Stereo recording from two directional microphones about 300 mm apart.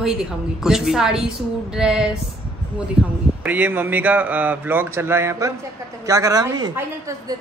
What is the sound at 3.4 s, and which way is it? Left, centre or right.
A woman's voice, centre.